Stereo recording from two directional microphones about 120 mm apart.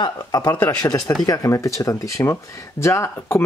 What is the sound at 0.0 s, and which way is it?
Speech, 35° left (ahead or behind).